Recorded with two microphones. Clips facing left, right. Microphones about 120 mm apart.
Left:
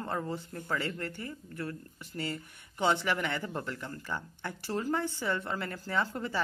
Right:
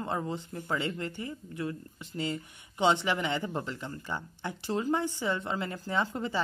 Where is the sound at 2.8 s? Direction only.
15° right (ahead or behind).